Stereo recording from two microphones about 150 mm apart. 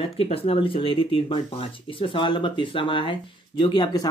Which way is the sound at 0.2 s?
40° left (ahead or behind).